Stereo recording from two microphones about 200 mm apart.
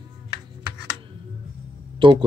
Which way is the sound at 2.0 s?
25° right (ahead or behind).